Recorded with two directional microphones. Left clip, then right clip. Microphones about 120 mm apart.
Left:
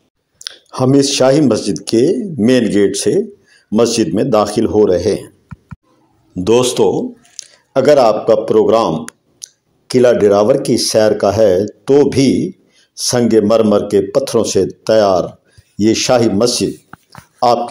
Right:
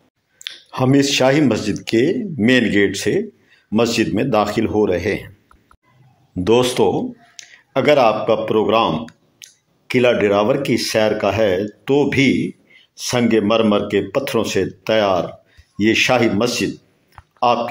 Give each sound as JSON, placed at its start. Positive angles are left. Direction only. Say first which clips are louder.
{"t": 0.4, "sound": "speech", "louder": "left 4 dB", "side_deg": 20}
{"t": 6.3, "sound": "a man's voice", "louder": "left 3 dB", "side_deg": 30}